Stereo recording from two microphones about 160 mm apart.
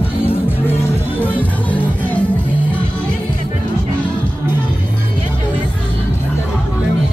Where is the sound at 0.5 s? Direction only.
10° left (ahead or behind).